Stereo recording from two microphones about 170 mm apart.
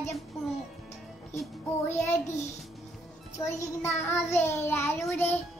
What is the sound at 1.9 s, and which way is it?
Music, 15° left (ahead or behind).